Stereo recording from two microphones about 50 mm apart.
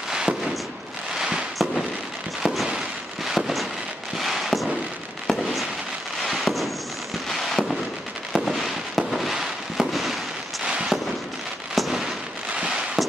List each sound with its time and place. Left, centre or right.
0.1 s fireworks: centre
10.6 s fireworks: centre
11.7 s fireworks: centre
12.5 s a sound: centre